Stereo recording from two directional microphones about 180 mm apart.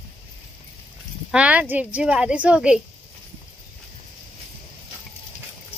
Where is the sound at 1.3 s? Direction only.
5° right (ahead or behind).